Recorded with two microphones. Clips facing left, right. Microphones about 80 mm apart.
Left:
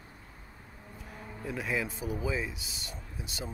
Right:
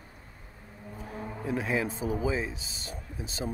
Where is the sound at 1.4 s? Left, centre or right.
Right.